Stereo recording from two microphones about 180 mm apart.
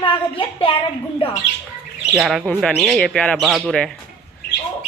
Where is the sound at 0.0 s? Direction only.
30° left (ahead or behind).